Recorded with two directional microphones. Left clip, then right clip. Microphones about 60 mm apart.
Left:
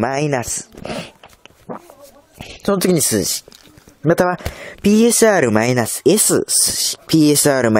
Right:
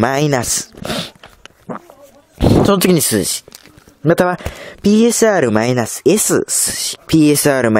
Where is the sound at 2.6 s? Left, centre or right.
Right.